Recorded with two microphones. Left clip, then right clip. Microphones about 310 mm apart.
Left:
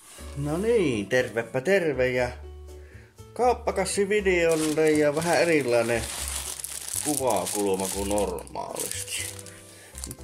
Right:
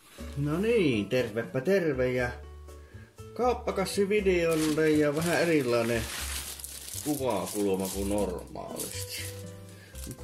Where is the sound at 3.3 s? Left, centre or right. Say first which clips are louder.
Left 5 dB; left.